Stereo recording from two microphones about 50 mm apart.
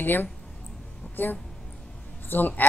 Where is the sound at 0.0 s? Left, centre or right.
Left.